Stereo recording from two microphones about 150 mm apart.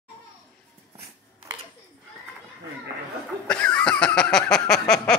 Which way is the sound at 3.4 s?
5° left (ahead or behind).